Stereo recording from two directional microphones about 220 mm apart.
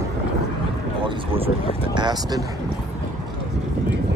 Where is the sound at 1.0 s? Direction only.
25° right (ahead or behind).